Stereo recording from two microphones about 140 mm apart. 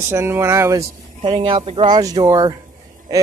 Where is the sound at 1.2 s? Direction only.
35° right (ahead or behind).